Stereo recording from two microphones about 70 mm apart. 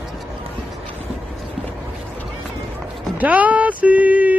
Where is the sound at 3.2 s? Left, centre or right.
Right.